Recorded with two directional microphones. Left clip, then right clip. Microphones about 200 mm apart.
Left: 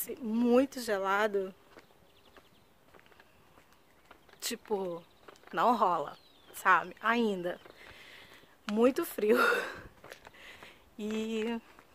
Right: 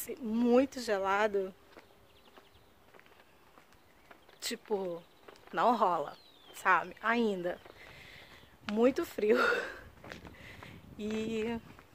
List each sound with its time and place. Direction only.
0.0 s speech: 10° left (ahead or behind)
4.4 s speech: 10° left (ahead or behind)
5.3 s a sound: 10° left (ahead or behind)
8.7 s speech: 15° left (ahead or behind)
10.2 s a sound: 10° left (ahead or behind)
11.1 s speech: 10° left (ahead or behind)